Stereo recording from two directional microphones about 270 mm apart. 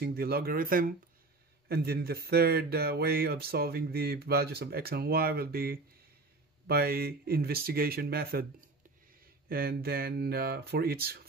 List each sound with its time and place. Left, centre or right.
0.0 s speech: right